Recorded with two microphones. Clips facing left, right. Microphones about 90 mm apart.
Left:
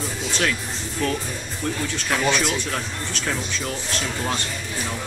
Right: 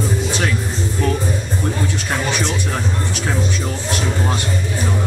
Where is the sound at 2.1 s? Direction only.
10° right (ahead or behind).